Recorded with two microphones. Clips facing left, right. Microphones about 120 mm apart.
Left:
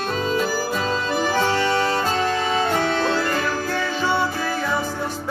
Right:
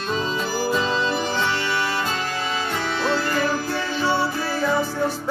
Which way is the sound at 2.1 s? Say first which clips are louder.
Left 6 dB; 50° left (ahead or behind).